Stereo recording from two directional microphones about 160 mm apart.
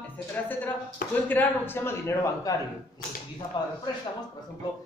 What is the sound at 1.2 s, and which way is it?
A man's voice, 10° left (ahead or behind).